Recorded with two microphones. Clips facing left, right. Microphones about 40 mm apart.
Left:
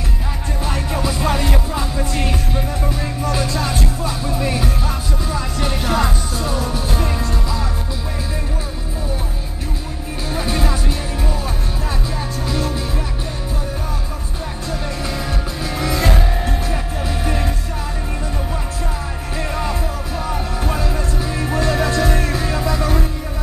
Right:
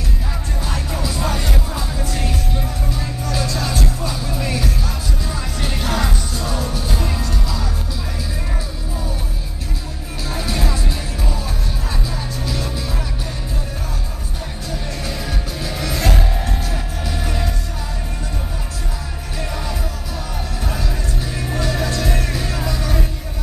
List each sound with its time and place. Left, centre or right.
0.7 s music: centre
10.3 s music: centre
12.4 s music: centre
16.0 s music: centre
19.3 s music: left